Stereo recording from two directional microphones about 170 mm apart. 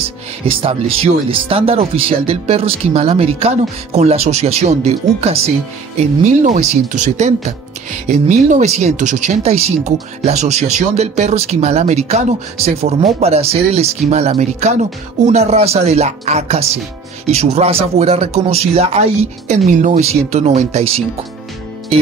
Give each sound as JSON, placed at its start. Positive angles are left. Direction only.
{"t": 0.5, "sound": "speech", "side_deg": -35}